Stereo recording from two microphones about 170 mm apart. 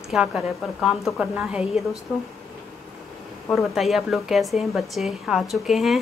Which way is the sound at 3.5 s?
Centre (ahead or behind).